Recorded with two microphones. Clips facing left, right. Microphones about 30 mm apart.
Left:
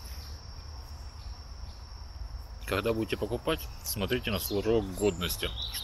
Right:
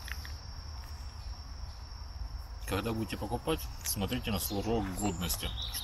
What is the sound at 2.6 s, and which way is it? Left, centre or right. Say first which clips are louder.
Speech: left 5 dB; left.